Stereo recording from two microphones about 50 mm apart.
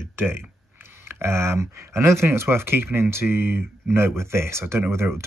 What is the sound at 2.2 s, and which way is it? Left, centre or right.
Speech, right.